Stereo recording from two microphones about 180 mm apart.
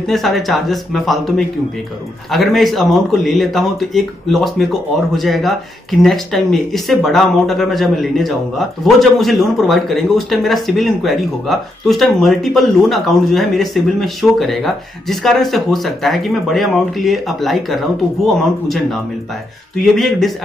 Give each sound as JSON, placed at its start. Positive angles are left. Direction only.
{"t": 0.1, "sound": "speech", "side_deg": 0}